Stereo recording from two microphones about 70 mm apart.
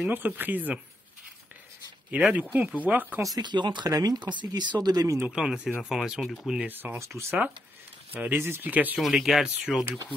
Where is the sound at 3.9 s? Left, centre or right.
Right.